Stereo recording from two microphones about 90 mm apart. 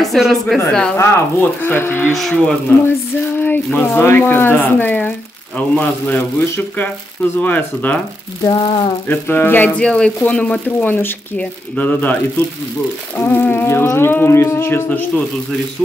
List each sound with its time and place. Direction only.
0.0 s speech: centre (ahead or behind)
0.9 s speech: 20° left (ahead or behind)
2.1 s speech: 5° left (ahead or behind)
3.3 s speech: 20° left (ahead or behind)
8.5 s a sound: 55° left (ahead or behind)
9.1 s speech: 25° left (ahead or behind)
9.8 s speech: 10° left (ahead or behind)
13.2 s speech: 20° left (ahead or behind)
14.9 s speech: 15° left (ahead or behind)